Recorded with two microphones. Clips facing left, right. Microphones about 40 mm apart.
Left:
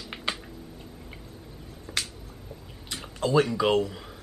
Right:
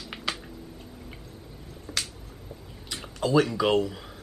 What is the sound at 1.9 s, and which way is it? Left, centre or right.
Finger snapping, centre.